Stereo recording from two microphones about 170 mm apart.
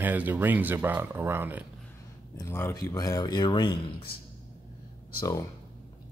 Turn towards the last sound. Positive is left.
turn(degrees=20)  # may be behind; listen again after turning